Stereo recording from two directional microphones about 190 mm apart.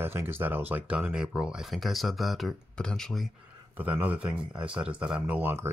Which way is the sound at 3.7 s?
10° right (ahead or behind).